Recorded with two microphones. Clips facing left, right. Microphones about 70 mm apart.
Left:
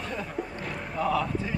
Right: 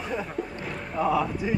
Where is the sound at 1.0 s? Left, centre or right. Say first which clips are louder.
Right 2 dB; centre.